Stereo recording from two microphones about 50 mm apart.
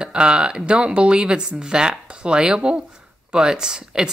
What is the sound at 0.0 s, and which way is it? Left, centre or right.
Speech, centre.